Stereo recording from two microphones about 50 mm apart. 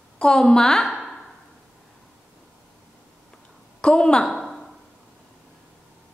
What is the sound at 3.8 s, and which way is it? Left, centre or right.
Speech, centre.